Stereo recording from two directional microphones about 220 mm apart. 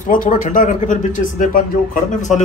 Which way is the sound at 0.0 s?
40° left (ahead or behind).